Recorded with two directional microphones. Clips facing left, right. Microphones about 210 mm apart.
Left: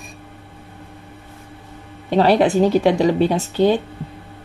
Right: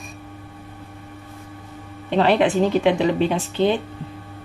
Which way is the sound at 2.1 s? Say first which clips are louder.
Left 3 dB; 40° left (ahead or behind).